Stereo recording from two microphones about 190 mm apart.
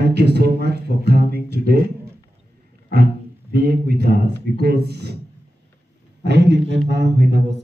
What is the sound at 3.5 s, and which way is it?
Speech, 55° right (ahead or behind).